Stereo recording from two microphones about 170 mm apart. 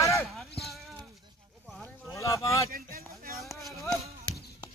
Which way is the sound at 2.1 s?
20° left (ahead or behind).